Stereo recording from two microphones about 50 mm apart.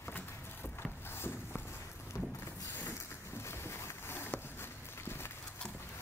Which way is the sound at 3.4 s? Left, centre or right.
Left.